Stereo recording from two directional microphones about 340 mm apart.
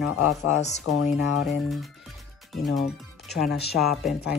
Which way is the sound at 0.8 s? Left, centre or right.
Left.